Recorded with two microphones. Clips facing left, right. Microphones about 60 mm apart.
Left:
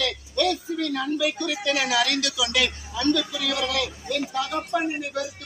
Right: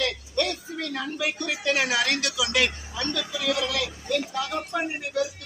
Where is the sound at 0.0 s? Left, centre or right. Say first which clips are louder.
Left 2 dB; right.